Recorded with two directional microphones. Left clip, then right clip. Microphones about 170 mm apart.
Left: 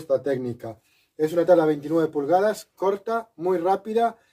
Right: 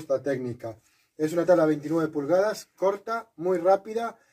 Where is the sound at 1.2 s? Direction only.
20° left (ahead or behind).